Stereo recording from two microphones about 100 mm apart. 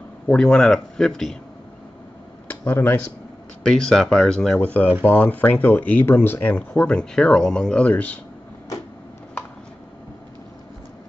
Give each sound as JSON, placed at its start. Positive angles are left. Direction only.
{"t": 0.3, "sound": "speech", "side_deg": 5}
{"t": 2.5, "sound": "speech", "side_deg": 15}
{"t": 3.6, "sound": "speech", "side_deg": 5}
{"t": 5.0, "sound": "speech", "side_deg": 15}